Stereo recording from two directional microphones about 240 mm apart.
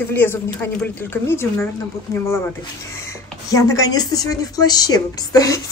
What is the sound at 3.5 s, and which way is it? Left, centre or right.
A woman's voice, centre.